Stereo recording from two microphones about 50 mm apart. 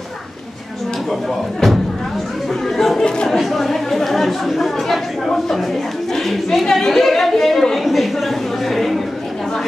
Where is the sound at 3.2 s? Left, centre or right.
Centre.